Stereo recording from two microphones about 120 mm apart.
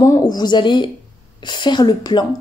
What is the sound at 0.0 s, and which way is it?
A woman's voice, 35° left (ahead or behind).